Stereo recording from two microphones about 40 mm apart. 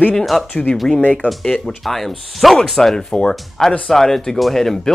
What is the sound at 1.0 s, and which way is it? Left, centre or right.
Speech, left.